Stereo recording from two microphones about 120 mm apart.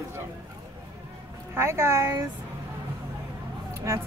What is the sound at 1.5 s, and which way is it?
Speech, 20° right (ahead or behind).